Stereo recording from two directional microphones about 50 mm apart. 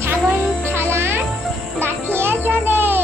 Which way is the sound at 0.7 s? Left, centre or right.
Right.